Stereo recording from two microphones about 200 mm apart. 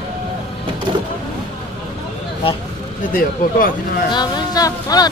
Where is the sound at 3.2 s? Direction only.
45° left (ahead or behind).